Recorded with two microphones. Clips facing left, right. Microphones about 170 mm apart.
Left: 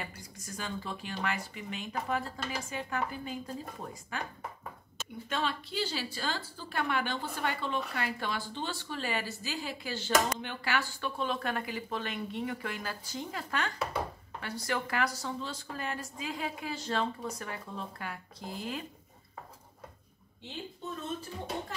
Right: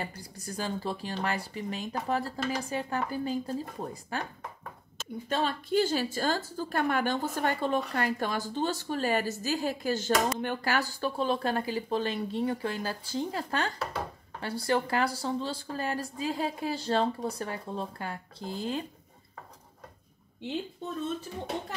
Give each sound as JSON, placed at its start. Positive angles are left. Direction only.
{"t": 0.0, "sound": "speech", "side_deg": -35}
{"t": 5.3, "sound": "a woman's voice", "side_deg": -45}